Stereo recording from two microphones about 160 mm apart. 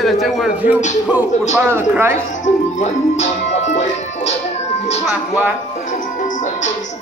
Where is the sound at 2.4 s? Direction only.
45° left (ahead or behind).